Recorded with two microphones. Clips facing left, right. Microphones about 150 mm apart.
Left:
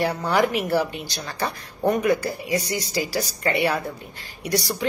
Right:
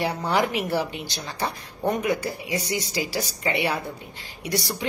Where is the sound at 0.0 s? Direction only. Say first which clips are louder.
Left 2 dB; 20° right (ahead or behind).